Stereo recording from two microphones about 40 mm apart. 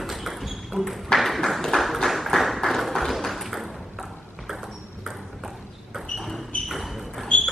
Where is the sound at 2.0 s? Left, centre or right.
Centre.